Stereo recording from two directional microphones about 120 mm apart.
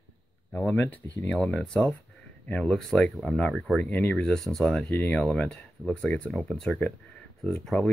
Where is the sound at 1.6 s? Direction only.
5° left (ahead or behind).